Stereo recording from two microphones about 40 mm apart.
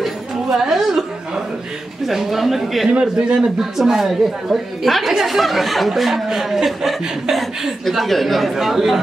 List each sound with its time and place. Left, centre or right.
0.0 s chatter: centre
2.0 s speech: centre
2.9 s a man's voice: right
3.7 s speech: centre